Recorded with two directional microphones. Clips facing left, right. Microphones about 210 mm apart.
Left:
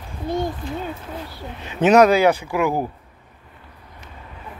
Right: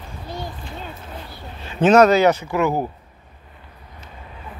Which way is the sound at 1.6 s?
20° left (ahead or behind).